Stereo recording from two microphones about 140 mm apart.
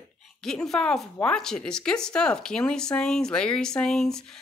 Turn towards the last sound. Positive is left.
turn(degrees=5)  # may be behind; listen again after turning